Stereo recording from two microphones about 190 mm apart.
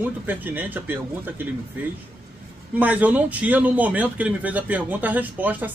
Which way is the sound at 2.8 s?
10° right (ahead or behind).